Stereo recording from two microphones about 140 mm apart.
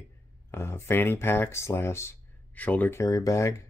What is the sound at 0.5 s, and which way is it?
Speech, 15° left (ahead or behind).